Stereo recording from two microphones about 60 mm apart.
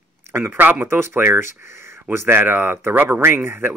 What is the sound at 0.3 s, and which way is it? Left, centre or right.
Speech, right.